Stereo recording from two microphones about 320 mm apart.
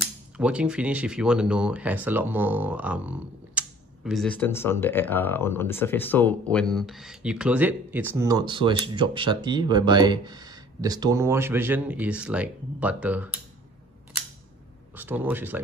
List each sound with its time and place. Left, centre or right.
0.0 s speech: centre
15.0 s speech: centre